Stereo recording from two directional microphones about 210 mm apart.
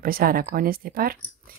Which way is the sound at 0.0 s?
45° right (ahead or behind).